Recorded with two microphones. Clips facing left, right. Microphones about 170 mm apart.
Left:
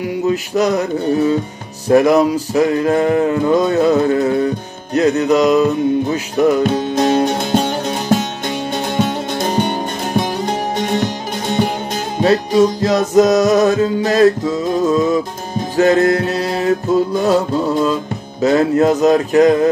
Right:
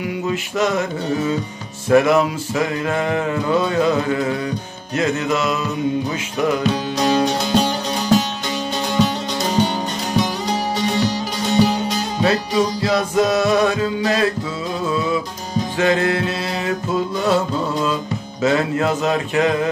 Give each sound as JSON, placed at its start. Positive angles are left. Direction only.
{"t": 0.3, "sound": "music", "side_deg": 40}
{"t": 1.9, "sound": "music", "side_deg": 40}